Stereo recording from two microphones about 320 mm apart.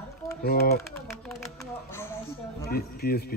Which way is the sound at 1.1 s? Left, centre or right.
Centre.